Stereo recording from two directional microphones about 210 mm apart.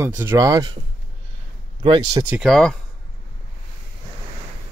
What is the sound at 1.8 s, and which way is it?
Speech, 25° right (ahead or behind).